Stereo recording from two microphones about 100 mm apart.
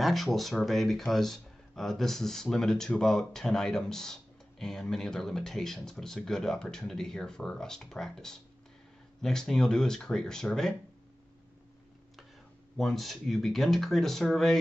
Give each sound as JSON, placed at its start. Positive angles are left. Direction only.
{"t": 0.0, "sound": "speech", "side_deg": 0}
{"t": 12.7, "sound": "speech", "side_deg": 0}